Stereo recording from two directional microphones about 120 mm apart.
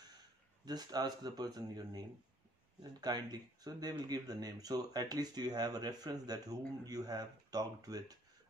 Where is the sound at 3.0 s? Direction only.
35° right (ahead or behind).